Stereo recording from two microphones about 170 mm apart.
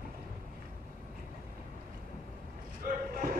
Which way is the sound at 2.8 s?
55° right (ahead or behind).